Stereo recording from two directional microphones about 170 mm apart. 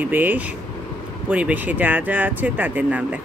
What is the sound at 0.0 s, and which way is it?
Speech, 10° right (ahead or behind).